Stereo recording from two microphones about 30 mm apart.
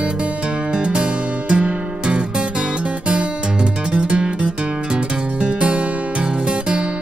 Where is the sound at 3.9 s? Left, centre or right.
Right.